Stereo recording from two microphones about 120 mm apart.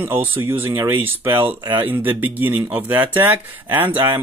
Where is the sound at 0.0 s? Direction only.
15° right (ahead or behind).